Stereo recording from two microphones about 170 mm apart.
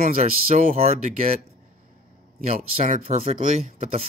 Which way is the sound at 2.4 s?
40° right (ahead or behind).